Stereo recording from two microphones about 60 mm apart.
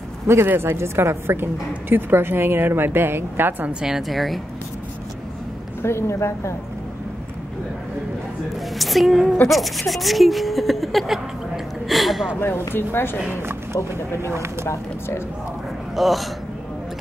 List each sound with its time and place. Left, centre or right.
0.5 s a woman's voice: right
3.8 s speech: centre
5.8 s speech: left
8.7 s speech: centre
12.4 s speech: left
14.2 s speech: right
14.7 s speech: left
16.0 s speech: centre